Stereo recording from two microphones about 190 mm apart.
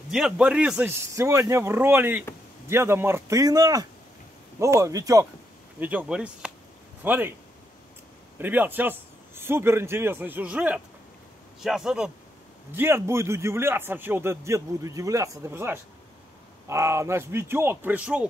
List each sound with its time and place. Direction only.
0.1 s a man's voice: 5° right (ahead or behind)
8.4 s a man's voice: 10° right (ahead or behind)